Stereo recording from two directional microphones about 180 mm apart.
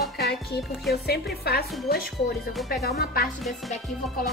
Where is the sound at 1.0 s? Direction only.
60° left (ahead or behind).